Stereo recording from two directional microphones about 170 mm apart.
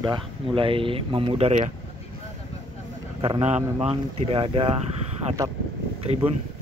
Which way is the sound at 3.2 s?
40° right (ahead or behind).